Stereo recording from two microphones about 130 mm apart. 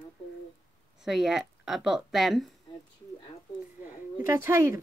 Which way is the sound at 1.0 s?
5° right (ahead or behind).